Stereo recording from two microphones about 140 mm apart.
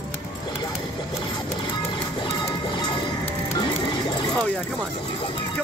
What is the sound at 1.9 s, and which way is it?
Music, 35° left (ahead or behind).